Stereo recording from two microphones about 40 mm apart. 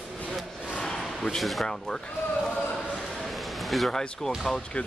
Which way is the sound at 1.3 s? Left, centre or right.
Centre.